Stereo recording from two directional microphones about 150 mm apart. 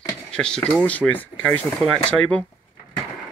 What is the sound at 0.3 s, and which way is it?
Speech, 5° left (ahead or behind).